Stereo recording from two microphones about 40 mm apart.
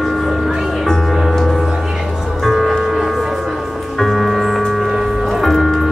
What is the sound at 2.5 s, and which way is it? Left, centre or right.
Music, centre.